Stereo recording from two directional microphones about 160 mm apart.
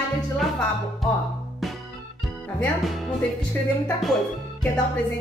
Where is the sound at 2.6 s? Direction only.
Centre (ahead or behind).